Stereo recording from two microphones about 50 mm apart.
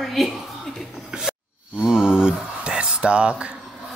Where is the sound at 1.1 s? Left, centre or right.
Centre.